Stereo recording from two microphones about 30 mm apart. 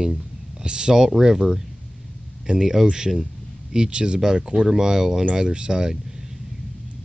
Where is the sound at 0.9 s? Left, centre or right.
Centre.